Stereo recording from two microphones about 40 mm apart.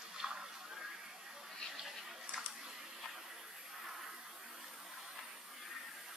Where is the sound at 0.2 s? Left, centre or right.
Centre.